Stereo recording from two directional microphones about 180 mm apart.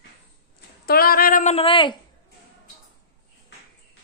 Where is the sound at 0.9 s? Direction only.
55° left (ahead or behind).